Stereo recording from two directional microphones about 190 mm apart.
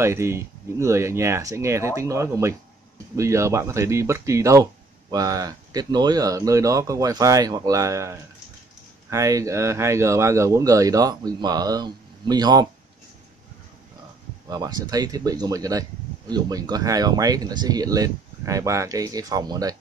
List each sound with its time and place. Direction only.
0.0 s speech: 15° right (ahead or behind)
14.5 s speech: 20° right (ahead or behind)